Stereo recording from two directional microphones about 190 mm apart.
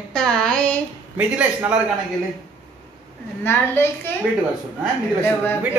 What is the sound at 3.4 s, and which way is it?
Speech, 10° left (ahead or behind).